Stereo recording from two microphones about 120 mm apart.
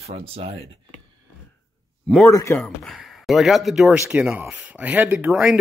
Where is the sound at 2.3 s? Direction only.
25° left (ahead or behind).